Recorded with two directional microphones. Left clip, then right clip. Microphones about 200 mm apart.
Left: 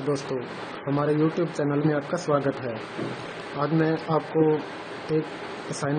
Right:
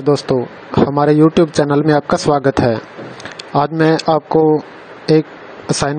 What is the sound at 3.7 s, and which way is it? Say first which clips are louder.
Speech: right 10 dB; 45° right (ahead or behind).